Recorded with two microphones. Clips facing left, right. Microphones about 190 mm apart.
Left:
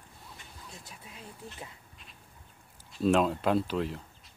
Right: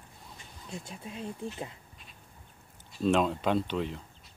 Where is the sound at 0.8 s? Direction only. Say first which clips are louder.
Right 8 dB; 25° right (ahead or behind).